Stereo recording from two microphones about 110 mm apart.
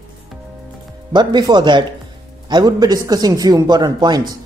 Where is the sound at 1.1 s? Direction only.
45° right (ahead or behind).